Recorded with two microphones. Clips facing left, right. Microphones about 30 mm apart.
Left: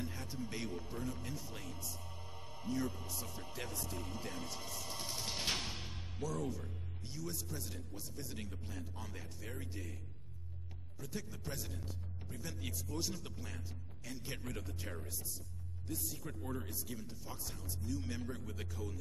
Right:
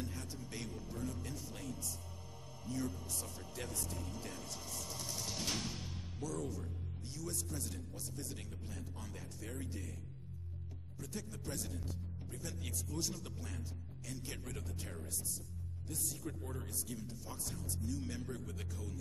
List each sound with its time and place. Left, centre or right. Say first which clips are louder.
0.0 s speech: left 2 dB; centre
2.3 s music: left 3 dB; left
3.1 s speech: left 1 dB; centre
3.5 s music: even; centre
6.2 s speech: left 2 dB; centre
11.0 s speech: left 1 dB; centre